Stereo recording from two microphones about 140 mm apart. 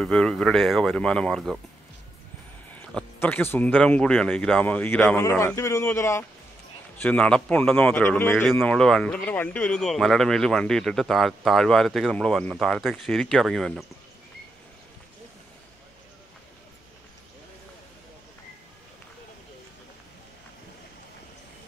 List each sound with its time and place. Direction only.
0.0 s speech: 5° left (ahead or behind)
2.7 s a sound: 5° left (ahead or behind)
3.2 s a man's voice: 15° left (ahead or behind)
7.0 s speech: 10° left (ahead or behind)